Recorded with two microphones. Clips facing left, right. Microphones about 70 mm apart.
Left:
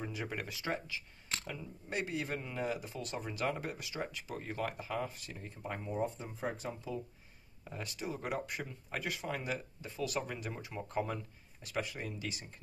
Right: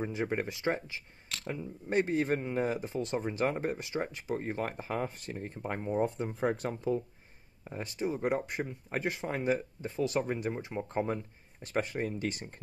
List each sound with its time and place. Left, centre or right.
0.0 s speech: right
1.9 s speech: right
7.7 s speech: right